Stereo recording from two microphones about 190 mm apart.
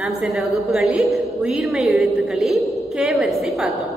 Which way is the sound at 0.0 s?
Centre (ahead or behind).